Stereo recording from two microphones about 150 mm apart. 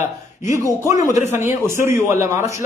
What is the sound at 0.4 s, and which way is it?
A man's voice, 20° right (ahead or behind).